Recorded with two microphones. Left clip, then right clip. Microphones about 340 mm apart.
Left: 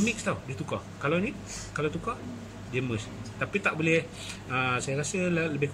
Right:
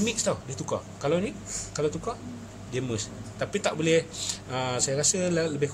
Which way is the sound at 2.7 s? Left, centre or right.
Right.